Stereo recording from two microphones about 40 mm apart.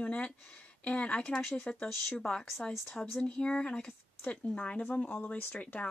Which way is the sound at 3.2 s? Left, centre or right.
Left.